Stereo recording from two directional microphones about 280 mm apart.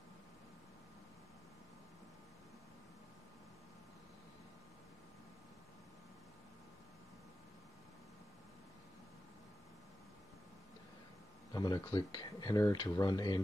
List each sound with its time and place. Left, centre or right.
11.5 s speech: centre